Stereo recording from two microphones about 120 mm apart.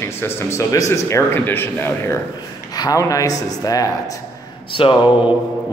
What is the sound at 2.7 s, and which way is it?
Speech, 30° left (ahead or behind).